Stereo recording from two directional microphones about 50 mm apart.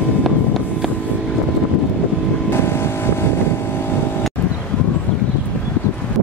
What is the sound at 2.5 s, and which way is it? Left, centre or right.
Vehicle, left.